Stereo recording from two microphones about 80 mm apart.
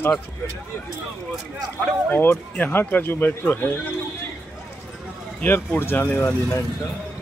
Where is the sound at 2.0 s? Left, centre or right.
Left.